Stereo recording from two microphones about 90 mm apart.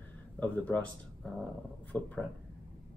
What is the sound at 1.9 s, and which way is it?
Speech, 10° left (ahead or behind).